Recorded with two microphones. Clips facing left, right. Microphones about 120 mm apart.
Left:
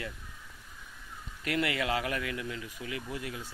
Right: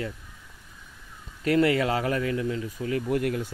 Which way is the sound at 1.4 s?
35° right (ahead or behind).